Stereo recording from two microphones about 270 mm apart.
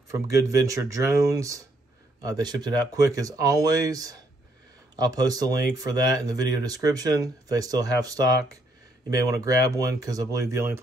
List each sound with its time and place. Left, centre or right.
0.1 s speech: centre